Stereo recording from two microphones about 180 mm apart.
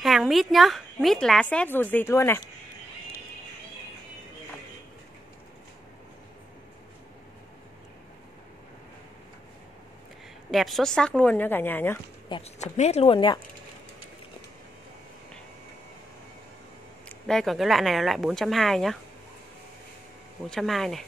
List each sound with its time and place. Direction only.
0.0 s a woman's voice: centre (ahead or behind)
10.5 s a woman's voice: centre (ahead or behind)
12.3 s speech: 35° left (ahead or behind)
17.1 s a woman's voice: 5° left (ahead or behind)
20.4 s a woman's voice: centre (ahead or behind)